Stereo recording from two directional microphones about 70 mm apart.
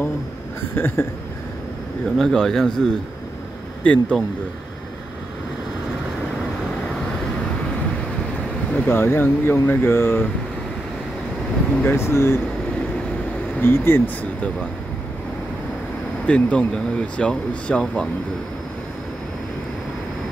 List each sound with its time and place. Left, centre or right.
0.6 s speech: left
2.1 s speech: centre
8.7 s speech: left
11.8 s speech: left
13.6 s speech: left
16.3 s speech: centre